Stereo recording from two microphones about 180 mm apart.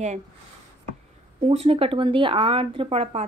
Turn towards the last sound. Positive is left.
turn(degrees=-35)  # may be behind; listen again after turning